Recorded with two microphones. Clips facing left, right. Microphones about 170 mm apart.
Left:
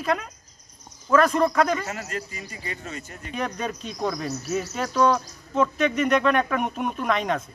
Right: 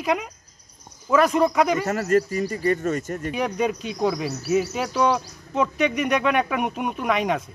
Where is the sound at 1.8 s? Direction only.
50° right (ahead or behind).